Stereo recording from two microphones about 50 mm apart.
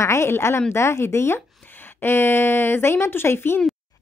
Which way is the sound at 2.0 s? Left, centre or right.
Left.